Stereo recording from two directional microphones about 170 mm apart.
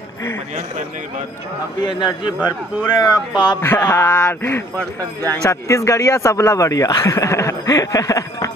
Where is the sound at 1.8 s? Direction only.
30° left (ahead or behind).